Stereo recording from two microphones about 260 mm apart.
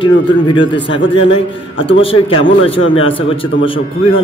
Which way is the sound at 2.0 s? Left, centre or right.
Left.